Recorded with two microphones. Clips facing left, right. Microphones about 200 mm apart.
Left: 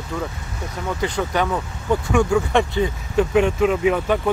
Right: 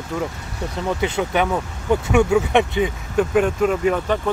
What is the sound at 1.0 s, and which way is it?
Speech, 20° right (ahead or behind).